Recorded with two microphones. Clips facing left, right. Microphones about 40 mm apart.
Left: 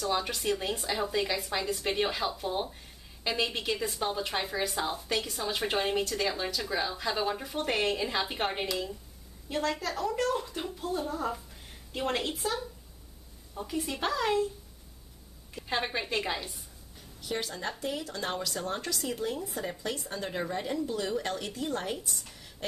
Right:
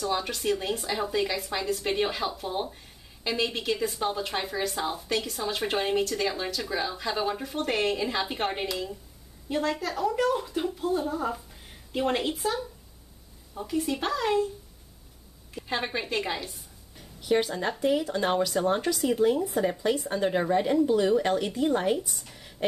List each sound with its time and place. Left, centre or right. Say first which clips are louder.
0.0 s a woman's voice: right 2 dB; centre
15.5 s a woman's voice: right 1 dB; centre
17.2 s speech: right 9 dB; centre